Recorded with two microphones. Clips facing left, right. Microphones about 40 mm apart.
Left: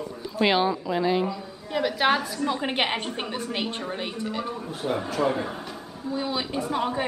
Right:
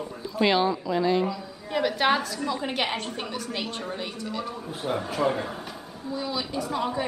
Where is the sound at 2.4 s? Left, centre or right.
Left.